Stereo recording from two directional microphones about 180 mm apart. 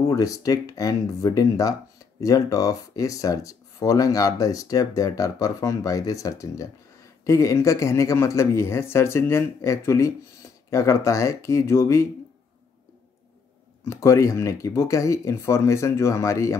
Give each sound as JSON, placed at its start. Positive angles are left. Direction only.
{"t": 0.0, "sound": "speech", "side_deg": 20}
{"t": 13.8, "sound": "speech", "side_deg": 15}